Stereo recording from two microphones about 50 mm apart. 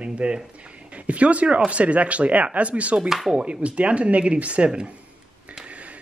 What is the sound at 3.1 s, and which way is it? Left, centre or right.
Speech, centre.